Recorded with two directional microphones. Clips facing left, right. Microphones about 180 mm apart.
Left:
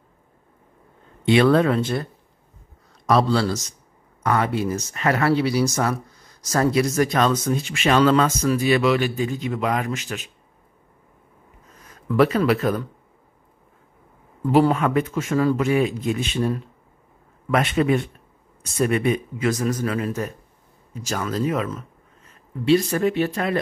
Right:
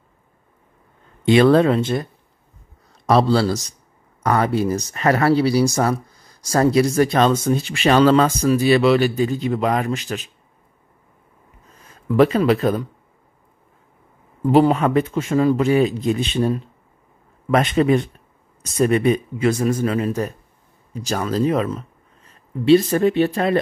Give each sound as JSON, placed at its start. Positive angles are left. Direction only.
{"t": 1.2, "sound": "speech", "side_deg": -35}
{"t": 3.1, "sound": "speech", "side_deg": -30}
{"t": 11.7, "sound": "a sound", "side_deg": -30}
{"t": 12.1, "sound": "speech", "side_deg": -25}
{"t": 14.4, "sound": "speech", "side_deg": -20}
{"t": 14.7, "sound": "speech", "side_deg": -35}